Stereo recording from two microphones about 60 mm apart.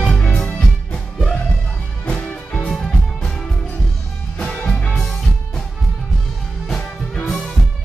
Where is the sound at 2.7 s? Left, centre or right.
Centre.